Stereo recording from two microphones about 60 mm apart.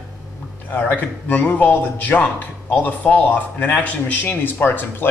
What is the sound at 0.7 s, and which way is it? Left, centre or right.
A man's voice, left.